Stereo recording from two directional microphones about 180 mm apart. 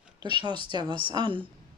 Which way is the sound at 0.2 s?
25° right (ahead or behind).